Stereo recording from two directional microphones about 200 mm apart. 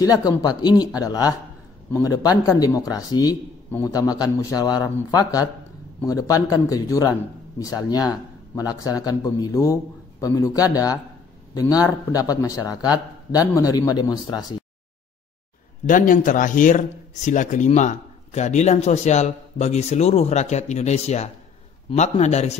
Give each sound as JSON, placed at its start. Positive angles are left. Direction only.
{"t": 0.0, "sound": "a man's voice", "side_deg": 20}
{"t": 15.9, "sound": "a man's voice", "side_deg": 40}